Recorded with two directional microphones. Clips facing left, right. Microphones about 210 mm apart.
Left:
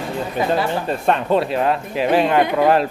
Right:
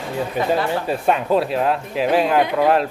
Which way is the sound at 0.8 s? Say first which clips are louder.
Even; 5° right (ahead or behind).